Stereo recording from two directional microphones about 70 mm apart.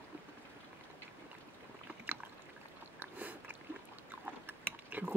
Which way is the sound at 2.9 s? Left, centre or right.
Right.